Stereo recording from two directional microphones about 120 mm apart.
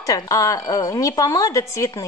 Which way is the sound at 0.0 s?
30° left (ahead or behind).